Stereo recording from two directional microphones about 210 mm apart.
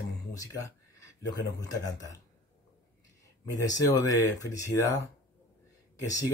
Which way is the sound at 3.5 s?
15° left (ahead or behind).